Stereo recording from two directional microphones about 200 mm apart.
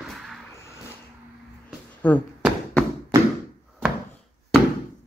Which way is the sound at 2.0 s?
10° left (ahead or behind).